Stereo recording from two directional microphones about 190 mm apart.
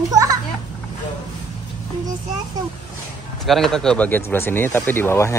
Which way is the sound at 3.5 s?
Centre (ahead or behind).